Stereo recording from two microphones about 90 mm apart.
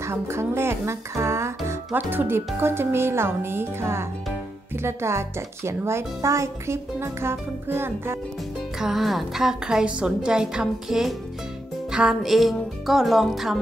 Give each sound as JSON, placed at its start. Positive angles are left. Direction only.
{"t": 0.0, "sound": "speech", "side_deg": -30}
{"t": 8.7, "sound": "a woman's voice", "side_deg": -5}